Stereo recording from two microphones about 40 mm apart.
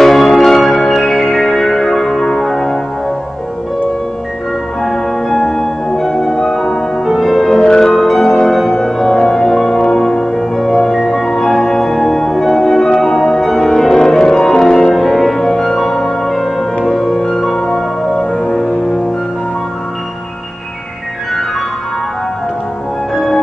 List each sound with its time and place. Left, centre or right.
0.0 s change ringing: centre
0.7 s music: centre
4.8 s music: centre
7.1 s music: centre
7.6 s music: centre
7.9 s music: centre
14.3 s music: left
15.0 s music: centre
15.5 s music: left
15.8 s music: centre
17.2 s music: left
18.1 s music: left